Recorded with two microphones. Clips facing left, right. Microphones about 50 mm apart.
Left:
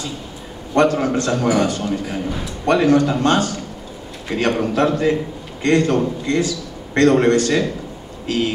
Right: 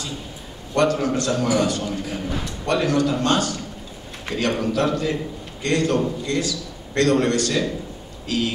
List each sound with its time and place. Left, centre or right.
0.7 s a man's voice: left